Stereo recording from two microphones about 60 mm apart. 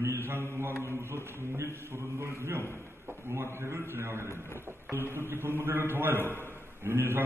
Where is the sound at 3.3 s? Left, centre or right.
Right.